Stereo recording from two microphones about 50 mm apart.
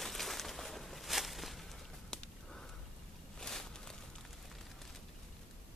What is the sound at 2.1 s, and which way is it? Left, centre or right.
Sniff, centre.